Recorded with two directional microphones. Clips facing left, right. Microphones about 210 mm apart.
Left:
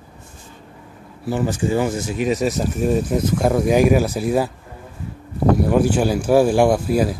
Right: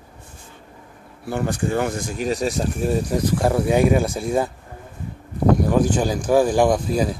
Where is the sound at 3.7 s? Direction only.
25° right (ahead or behind).